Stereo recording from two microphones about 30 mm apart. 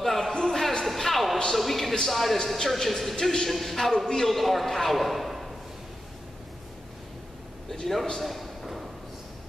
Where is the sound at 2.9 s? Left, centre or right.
Centre.